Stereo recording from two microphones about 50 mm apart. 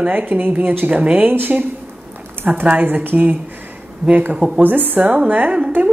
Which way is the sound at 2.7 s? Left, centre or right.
Right.